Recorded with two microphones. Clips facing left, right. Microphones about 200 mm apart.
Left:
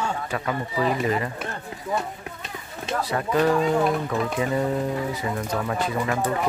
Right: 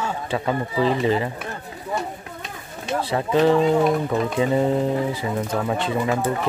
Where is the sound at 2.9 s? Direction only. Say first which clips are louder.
Right 3 dB; 25° right (ahead or behind).